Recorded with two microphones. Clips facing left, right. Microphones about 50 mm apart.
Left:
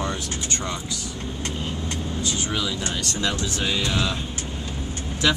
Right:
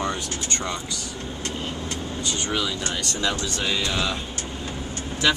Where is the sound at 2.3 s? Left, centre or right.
Centre.